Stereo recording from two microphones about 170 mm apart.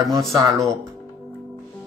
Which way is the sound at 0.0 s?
Centre (ahead or behind).